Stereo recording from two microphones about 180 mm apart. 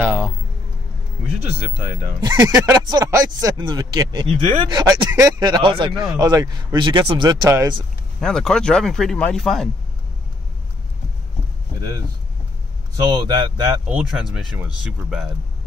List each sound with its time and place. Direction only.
0.0 s speech: 5° right (ahead or behind)
1.8 s speech: 55° right (ahead or behind)
2.2 s speech: 20° right (ahead or behind)
8.2 s speech: 5° left (ahead or behind)
13.1 s speech: 20° right (ahead or behind)
13.8 s speech: 5° right (ahead or behind)